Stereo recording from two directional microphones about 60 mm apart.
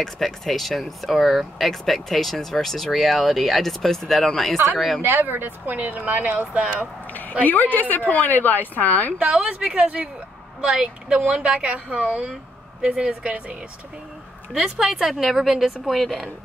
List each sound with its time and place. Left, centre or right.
0.0 s speech: centre
5.0 s speech: right
7.1 s a woman's voice: left
9.2 s speech: centre